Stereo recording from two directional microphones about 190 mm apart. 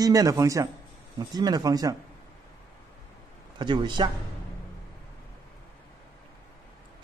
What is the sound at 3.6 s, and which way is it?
Speech, 25° right (ahead or behind).